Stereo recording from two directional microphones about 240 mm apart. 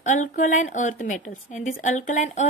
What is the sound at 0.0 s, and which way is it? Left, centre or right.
A woman's voice, left.